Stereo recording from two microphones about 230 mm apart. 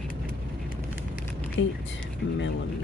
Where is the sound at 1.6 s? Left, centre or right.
Left.